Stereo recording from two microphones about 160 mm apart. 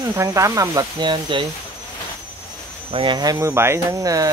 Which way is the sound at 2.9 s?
30° right (ahead or behind).